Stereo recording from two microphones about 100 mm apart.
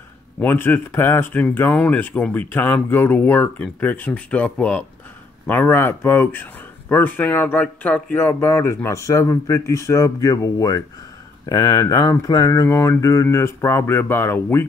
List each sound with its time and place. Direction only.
0.4 s speech: 20° left (ahead or behind)